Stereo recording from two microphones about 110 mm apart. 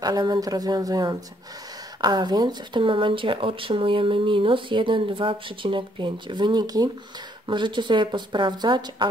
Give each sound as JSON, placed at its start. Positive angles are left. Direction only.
{"t": 0.0, "sound": "speech", "side_deg": -35}
{"t": 7.4, "sound": "speech", "side_deg": -45}